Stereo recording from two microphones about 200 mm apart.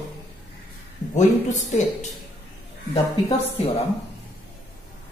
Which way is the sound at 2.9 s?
30° left (ahead or behind).